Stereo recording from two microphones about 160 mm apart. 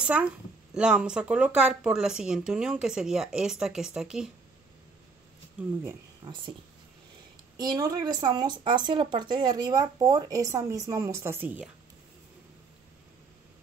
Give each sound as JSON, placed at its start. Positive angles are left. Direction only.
{"t": 0.0, "sound": "speech", "side_deg": -10}
{"t": 6.2, "sound": "speech", "side_deg": -30}
{"t": 7.5, "sound": "speech", "side_deg": -25}